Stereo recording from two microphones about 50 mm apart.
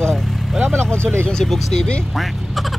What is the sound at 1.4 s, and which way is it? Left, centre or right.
Speech, centre.